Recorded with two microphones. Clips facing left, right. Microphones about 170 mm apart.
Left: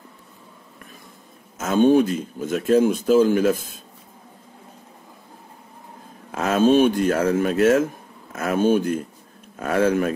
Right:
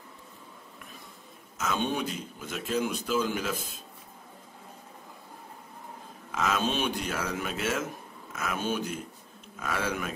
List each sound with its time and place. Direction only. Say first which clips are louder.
1.6 s speech: left 14 dB; 45° left (ahead or behind)
6.3 s speech: left 12 dB; 50° left (ahead or behind)